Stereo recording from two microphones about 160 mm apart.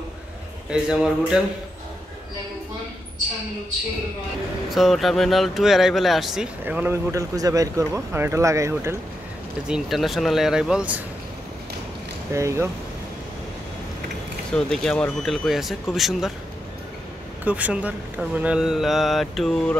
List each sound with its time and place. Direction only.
0.7 s speech: 5° right (ahead or behind)
4.6 s speech: centre (ahead or behind); by 8.9 s 20° right (ahead or behind)
9.7 s speech: centre (ahead or behind)
12.3 s speech: 20° right (ahead or behind)
14.5 s speech: 5° left (ahead or behind)
17.5 s speech: 10° right (ahead or behind)